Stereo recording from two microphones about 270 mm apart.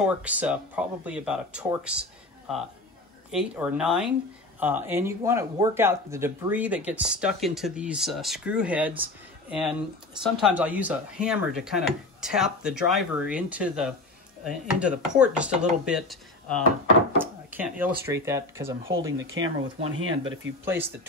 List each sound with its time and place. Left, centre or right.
0.0 s speech: centre
19.1 s speech: right
20.6 s speech: centre